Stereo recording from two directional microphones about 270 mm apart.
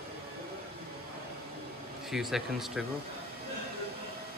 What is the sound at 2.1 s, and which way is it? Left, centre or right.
Speech, centre.